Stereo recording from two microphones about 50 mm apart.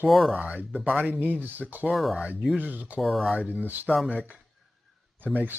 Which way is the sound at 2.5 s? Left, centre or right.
Right.